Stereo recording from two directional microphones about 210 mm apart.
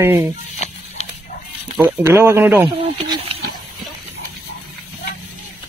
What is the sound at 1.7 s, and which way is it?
Speech, 10° right (ahead or behind).